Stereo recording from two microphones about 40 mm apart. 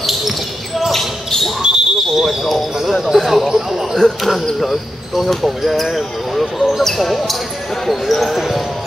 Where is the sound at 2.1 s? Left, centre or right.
Centre.